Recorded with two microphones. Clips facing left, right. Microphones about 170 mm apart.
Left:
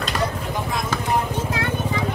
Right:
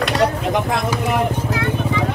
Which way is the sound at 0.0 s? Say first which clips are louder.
Right 7 dB; 85° right.